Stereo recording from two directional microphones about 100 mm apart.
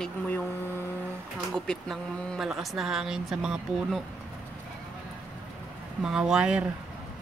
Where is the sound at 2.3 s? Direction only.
5° right (ahead or behind).